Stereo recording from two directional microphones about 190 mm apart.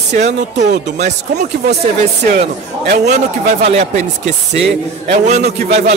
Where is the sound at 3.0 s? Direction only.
35° right (ahead or behind).